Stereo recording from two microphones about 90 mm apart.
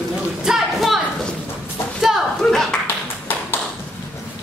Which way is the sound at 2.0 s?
5° right (ahead or behind).